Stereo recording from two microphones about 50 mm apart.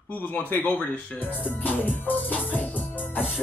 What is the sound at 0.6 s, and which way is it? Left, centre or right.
Speech, left.